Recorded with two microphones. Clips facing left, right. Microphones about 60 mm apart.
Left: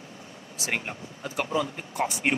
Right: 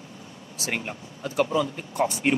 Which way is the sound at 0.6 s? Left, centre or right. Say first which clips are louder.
Even; centre.